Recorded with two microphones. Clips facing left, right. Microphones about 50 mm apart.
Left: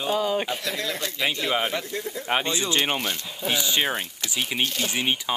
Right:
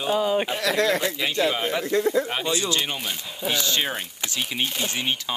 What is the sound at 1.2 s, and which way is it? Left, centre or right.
Speech, centre.